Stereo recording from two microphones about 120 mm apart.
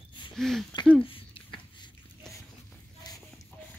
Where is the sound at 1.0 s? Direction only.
45° left (ahead or behind).